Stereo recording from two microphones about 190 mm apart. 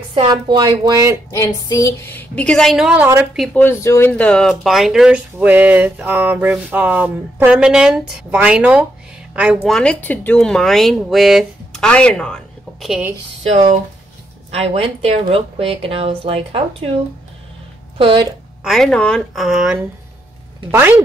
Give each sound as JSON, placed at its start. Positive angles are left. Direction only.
{"t": 0.3, "sound": "speech", "side_deg": -20}
{"t": 1.3, "sound": "speech", "side_deg": 15}
{"t": 3.5, "sound": "speech", "side_deg": 15}
{"t": 13.4, "sound": "speech", "side_deg": -35}
{"t": 17.9, "sound": "speech", "side_deg": -25}
{"t": 18.6, "sound": "speech", "side_deg": 0}